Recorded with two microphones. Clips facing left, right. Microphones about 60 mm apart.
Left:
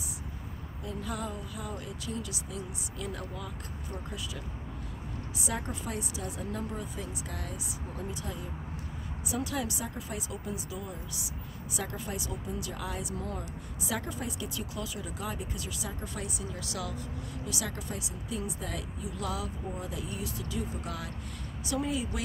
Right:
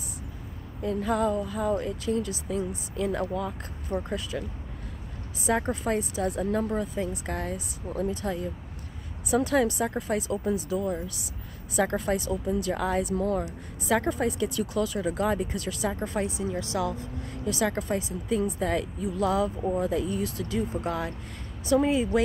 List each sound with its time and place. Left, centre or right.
0.8 s speech: right
3.9 s speech: right
5.4 s speech: right
11.7 s speech: right
16.0 s speech: right